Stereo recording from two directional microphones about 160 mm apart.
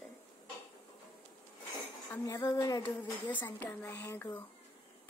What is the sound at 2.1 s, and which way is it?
A woman's voice, 20° left (ahead or behind).